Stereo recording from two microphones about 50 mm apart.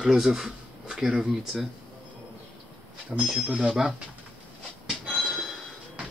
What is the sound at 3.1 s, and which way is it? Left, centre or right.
Speech, right.